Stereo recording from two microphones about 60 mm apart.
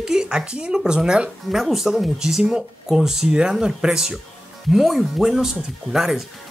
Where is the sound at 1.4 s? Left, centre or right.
Centre.